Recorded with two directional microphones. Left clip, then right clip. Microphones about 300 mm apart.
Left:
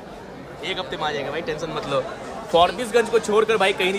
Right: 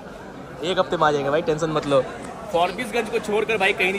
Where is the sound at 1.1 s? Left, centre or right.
Left.